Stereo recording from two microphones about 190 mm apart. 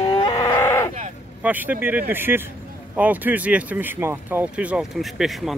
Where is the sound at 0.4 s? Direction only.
15° left (ahead or behind).